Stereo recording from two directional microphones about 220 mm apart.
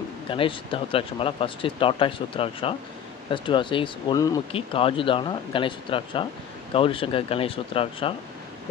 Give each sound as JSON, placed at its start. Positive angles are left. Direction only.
{"t": 0.3, "sound": "speech", "side_deg": 25}